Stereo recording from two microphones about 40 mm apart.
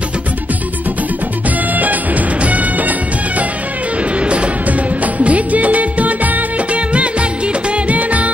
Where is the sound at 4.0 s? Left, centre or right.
Right.